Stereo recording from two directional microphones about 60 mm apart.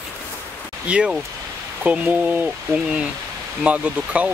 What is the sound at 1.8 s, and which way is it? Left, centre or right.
Speech, right.